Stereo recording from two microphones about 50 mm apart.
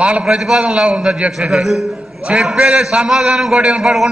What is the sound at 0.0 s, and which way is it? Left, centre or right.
A man's voice, centre.